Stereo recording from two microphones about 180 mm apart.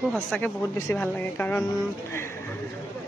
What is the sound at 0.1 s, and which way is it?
A man's voice, 5° left (ahead or behind).